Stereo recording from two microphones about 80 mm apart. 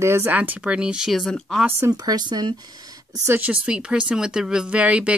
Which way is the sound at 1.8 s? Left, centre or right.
Right.